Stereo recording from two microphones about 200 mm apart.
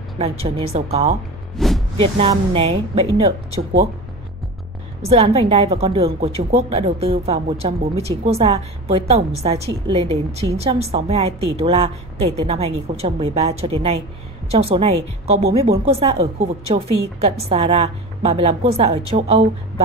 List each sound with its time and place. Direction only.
0.7 s a woman's voice: 30° right (ahead or behind)
1.6 s speech: centre (ahead or behind)
2.1 s a woman's voice: 30° right (ahead or behind)
5.0 s a woman's voice: 30° right (ahead or behind)